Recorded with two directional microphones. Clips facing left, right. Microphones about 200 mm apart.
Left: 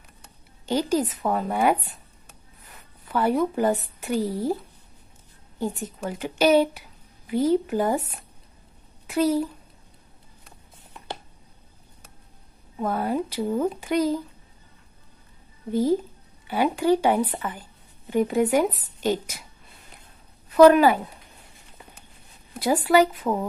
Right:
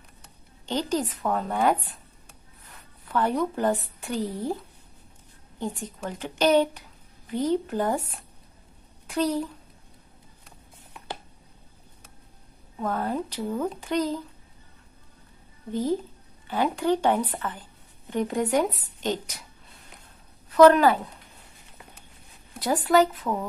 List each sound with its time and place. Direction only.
0.7 s speech: 10° left (ahead or behind)
3.1 s speech: 5° left (ahead or behind)
5.6 s speech: 10° left (ahead or behind)
9.0 s a child's voice: 5° left (ahead or behind)
12.7 s speech: 10° left (ahead or behind)
15.7 s speech: 10° left (ahead or behind)
20.4 s speech: 10° left (ahead or behind)
22.8 s speech: 10° left (ahead or behind)